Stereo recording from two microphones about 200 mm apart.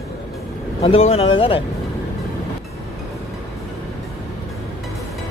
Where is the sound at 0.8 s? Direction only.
30° left (ahead or behind).